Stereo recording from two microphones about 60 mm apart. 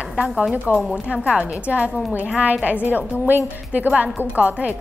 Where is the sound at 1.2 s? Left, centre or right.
Centre.